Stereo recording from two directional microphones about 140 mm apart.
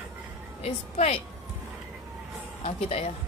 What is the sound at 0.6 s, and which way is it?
Speech, 45° left (ahead or behind).